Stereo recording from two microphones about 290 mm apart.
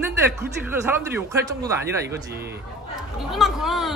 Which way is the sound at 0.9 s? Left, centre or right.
Centre.